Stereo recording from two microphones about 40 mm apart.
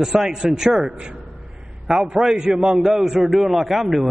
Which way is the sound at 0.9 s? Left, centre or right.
Right.